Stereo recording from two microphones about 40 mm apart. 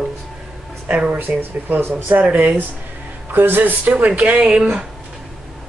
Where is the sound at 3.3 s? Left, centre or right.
Right.